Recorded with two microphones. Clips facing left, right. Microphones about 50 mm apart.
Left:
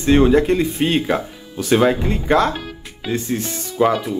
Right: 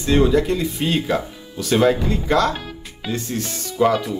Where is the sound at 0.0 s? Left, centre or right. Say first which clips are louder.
Left 3 dB; left.